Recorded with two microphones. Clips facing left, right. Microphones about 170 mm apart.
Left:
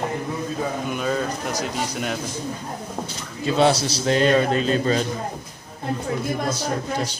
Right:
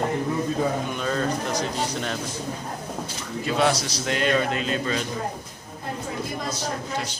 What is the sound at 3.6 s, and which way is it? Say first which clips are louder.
Speech: left 5 dB; 30° left (ahead or behind).